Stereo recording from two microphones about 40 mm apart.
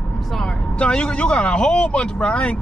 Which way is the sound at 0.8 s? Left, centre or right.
Left.